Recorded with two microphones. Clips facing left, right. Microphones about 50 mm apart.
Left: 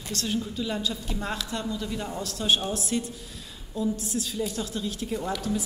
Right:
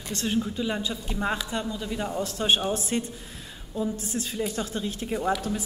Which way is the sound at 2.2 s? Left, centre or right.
Right.